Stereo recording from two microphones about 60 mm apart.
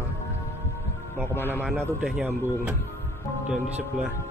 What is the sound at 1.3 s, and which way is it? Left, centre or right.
A man's voice, left.